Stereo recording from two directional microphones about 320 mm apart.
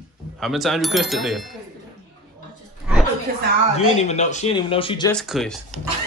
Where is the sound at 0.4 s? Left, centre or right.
Centre.